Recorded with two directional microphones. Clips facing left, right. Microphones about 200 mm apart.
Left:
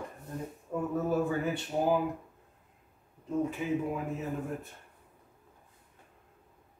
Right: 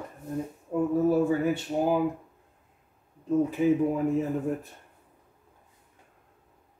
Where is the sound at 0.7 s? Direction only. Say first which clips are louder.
Right 7 dB; 30° right (ahead or behind).